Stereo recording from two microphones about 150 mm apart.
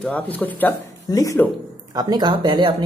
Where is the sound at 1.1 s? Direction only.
25° left (ahead or behind).